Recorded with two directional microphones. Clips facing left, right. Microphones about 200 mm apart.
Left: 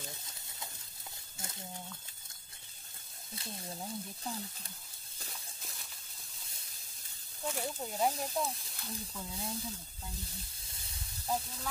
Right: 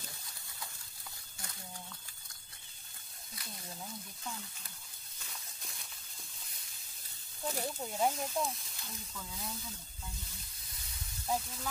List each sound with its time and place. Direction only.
0.2 s a sound: 20° left (ahead or behind)
3.3 s speech: 30° left (ahead or behind)
5.3 s a sound: centre (ahead or behind)
7.6 s speech: centre (ahead or behind)
8.9 s speech: 30° left (ahead or behind)
11.2 s speech: centre (ahead or behind)